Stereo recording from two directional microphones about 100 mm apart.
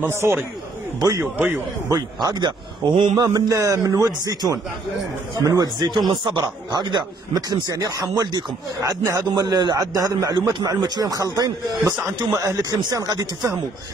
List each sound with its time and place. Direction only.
0.0 s speech: 25° right (ahead or behind)
0.9 s a man's voice: 40° right (ahead or behind)
2.2 s speech: 45° right (ahead or behind)
3.2 s a man's voice: 35° right (ahead or behind)
9.0 s a man's voice: 35° right (ahead or behind)